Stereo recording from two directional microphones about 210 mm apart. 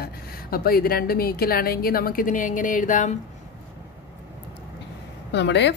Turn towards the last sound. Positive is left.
turn(degrees=55)  # may be behind; listen again after turning